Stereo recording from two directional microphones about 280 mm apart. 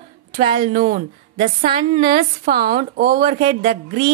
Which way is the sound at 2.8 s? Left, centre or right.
Right.